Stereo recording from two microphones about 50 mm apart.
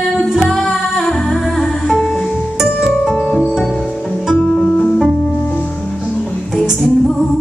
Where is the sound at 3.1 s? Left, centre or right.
Left.